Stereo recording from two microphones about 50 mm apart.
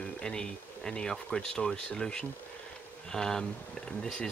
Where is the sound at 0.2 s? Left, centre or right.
Centre.